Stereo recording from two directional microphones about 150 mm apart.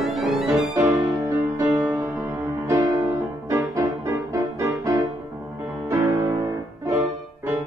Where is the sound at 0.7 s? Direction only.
20° right (ahead or behind).